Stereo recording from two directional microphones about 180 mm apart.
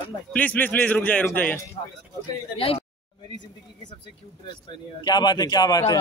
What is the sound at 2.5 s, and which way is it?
Speech, 30° left (ahead or behind).